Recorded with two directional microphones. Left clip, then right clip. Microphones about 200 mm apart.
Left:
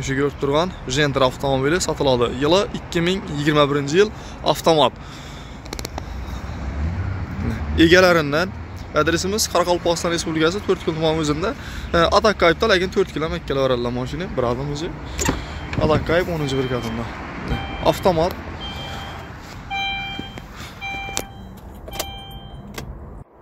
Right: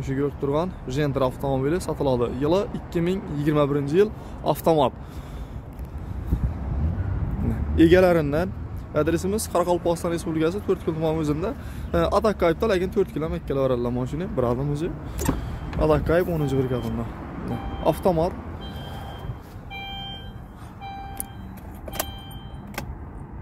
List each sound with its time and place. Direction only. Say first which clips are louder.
0.0 s speech: left 5 dB; 5° right (ahead or behind)
7.7 s speech: left 4 dB; 15° right (ahead or behind)
14.7 s speech: left 1 dB; 40° right (ahead or behind); by 16.8 s 20° right (ahead or behind)
17.5 s vehicle: left 4 dB; 10° right (ahead or behind)